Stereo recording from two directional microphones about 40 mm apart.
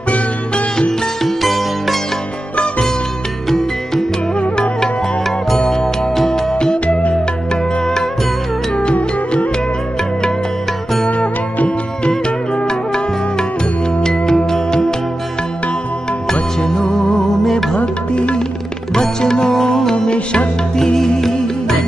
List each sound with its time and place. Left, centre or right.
1.2 s sitar: centre
3.4 s music: centre
6.5 s music: left
11.1 s music: left
12.5 s music: centre
16.6 s music: centre
17.7 s music: left
18.9 s music: centre